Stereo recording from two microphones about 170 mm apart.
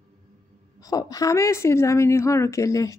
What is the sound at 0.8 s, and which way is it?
A woman's voice, 20° left (ahead or behind).